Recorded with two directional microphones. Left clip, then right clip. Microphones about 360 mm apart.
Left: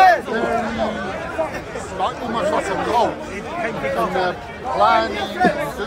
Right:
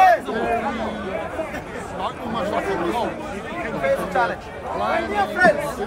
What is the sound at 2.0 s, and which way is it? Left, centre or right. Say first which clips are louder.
Chatter: left 5 dB; left.